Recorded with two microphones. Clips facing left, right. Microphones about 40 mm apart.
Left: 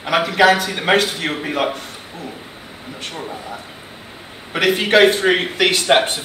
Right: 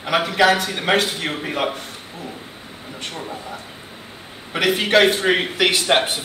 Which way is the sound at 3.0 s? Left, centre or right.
Centre.